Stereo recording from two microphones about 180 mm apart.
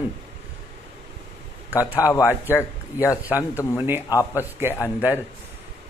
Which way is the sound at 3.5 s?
15° left (ahead or behind).